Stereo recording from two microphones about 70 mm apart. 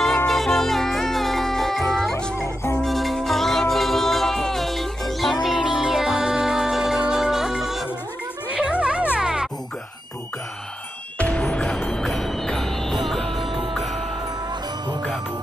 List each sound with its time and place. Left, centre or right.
0.3 s music: centre
11.1 s music: centre